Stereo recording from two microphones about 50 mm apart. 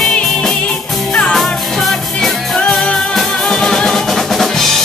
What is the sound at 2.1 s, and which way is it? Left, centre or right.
Music, centre.